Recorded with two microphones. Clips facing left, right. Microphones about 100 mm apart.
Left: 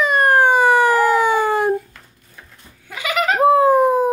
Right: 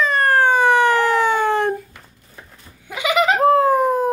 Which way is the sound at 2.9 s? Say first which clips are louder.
Right 3 dB; 10° right (ahead or behind).